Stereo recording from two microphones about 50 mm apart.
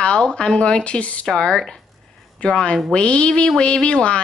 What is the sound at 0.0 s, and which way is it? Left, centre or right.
Speech, centre.